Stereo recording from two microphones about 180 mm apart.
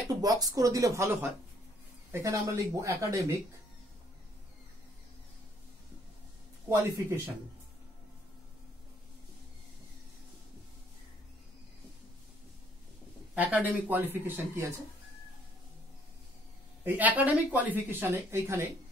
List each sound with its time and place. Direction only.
0.1 s speech: 20° right (ahead or behind)
6.7 s speech: 10° right (ahead or behind)
13.3 s speech: 10° right (ahead or behind)
16.8 s speech: 10° right (ahead or behind)